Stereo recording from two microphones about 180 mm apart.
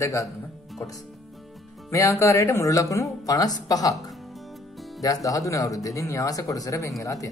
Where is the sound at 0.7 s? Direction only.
Centre (ahead or behind).